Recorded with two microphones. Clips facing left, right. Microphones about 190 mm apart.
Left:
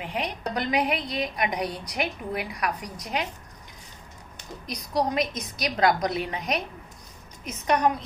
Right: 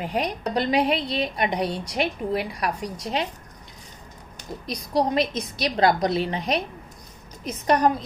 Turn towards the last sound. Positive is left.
turn(degrees=-35)  # may be behind; listen again after turning